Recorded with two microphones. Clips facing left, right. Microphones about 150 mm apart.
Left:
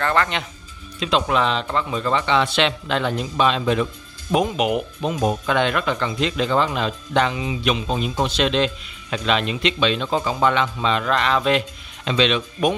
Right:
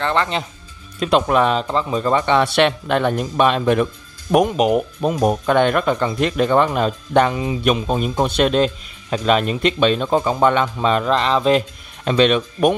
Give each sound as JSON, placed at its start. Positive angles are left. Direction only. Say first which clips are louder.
{"t": 0.0, "sound": "speech", "louder": "right 1 dB", "side_deg": -25}
{"t": 0.9, "sound": "speech", "louder": "right 4 dB", "side_deg": -50}
{"t": 1.7, "sound": "speech", "louder": "right 4 dB", "side_deg": -35}
{"t": 4.6, "sound": "speech", "louder": "right 5 dB", "side_deg": -40}
{"t": 5.2, "sound": "speech", "louder": "right 5 dB", "side_deg": -50}
{"t": 11.1, "sound": "speech", "louder": "right 2 dB", "side_deg": -30}